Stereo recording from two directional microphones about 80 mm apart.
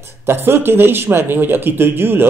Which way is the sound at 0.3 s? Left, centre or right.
Right.